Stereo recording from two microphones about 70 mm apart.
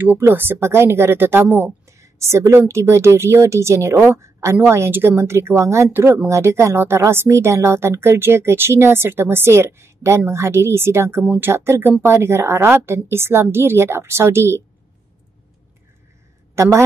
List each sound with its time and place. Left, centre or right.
0.2 s a woman's voice: right
2.0 s a sound: right
2.7 s a woman's voice: right
6.2 s a woman's voice: right